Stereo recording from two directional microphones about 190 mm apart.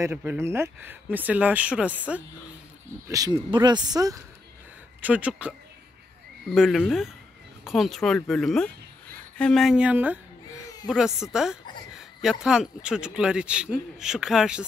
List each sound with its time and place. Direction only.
0.0 s speech: 10° right (ahead or behind)
3.1 s speech: 20° right (ahead or behind)
5.0 s speech: 5° right (ahead or behind)
6.5 s speech: centre (ahead or behind)